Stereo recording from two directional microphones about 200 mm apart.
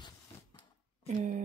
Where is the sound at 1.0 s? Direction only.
35° right (ahead or behind).